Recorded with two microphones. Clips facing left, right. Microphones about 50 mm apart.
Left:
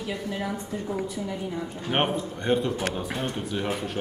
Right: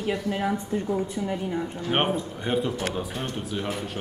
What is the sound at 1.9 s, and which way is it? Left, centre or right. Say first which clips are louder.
A man's voice: even; centre.